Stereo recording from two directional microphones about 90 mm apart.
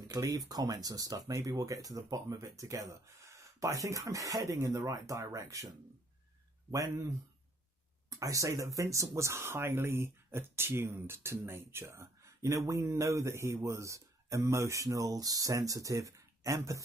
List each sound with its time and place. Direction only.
0.1 s speech: 45° right (ahead or behind)
8.1 s speech: 35° right (ahead or behind)